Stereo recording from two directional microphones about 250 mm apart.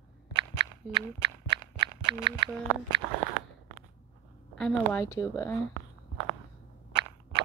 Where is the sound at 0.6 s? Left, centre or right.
Centre.